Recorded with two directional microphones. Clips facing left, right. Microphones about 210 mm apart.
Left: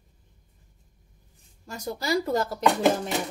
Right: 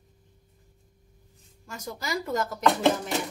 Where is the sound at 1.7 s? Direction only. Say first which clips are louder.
Left 6 dB; 35° left (ahead or behind).